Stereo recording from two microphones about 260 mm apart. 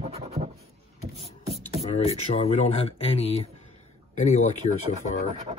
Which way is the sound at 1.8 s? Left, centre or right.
Left.